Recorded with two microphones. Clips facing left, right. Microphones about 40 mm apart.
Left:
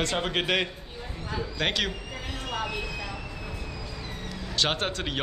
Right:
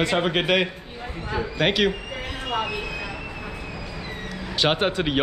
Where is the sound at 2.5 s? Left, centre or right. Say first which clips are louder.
Right 5 dB; right.